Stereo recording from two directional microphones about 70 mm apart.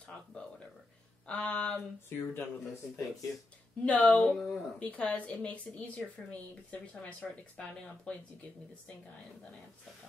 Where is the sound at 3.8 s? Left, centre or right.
Left.